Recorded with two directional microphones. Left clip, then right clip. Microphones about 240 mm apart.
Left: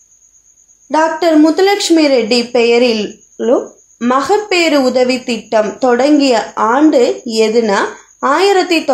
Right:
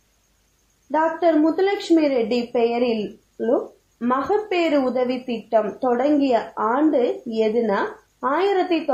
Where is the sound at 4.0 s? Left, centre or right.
Left.